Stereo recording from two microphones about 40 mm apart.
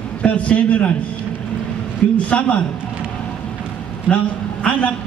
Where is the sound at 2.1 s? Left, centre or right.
Left.